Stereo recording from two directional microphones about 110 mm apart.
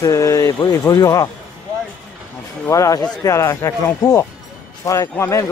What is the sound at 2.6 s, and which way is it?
Speech, 30° left (ahead or behind).